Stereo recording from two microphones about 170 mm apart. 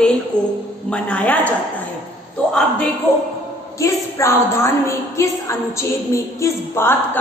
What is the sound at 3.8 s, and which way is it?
A woman's voice, 15° left (ahead or behind).